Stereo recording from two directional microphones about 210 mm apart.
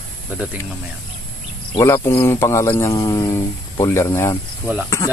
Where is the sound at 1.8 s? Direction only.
15° left (ahead or behind).